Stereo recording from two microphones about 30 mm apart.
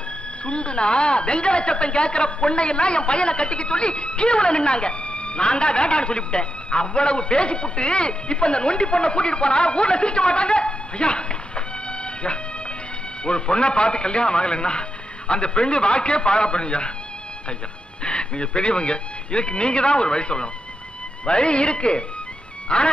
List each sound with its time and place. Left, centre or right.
0.5 s a woman's voice: left
13.2 s a woman's voice: left
18.0 s a woman's voice: left